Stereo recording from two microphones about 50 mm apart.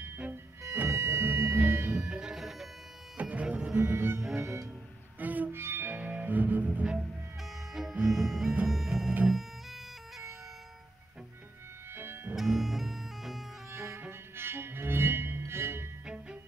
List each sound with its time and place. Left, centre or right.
0.3 s music: right
2.0 s music: centre
3.2 s music: right
3.4 s music: centre
3.8 s music: right
4.4 s music: right
5.2 s music: right
5.5 s music: right
5.9 s music: right
8.1 s music: centre
9.3 s bagpipes: centre
11.9 s music: right
12.4 s music: centre
13.7 s music: right